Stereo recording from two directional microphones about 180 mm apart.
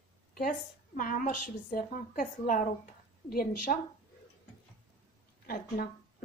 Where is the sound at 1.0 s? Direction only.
50° left (ahead or behind).